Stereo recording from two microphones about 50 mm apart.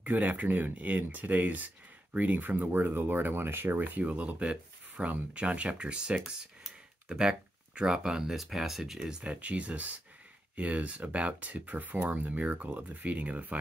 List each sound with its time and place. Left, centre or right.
0.0 s speech: right; by 9.1 s centre
9.2 s speech: right